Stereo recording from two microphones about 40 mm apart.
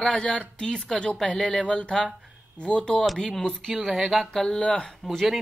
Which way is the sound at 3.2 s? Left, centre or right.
Centre.